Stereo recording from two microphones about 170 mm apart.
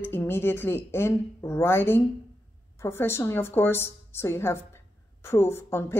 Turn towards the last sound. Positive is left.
turn(degrees=15)  # may be behind; listen again after turning